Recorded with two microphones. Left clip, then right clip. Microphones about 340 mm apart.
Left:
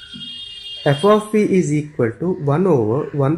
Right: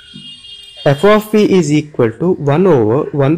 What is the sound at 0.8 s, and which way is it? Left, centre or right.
Speech, right.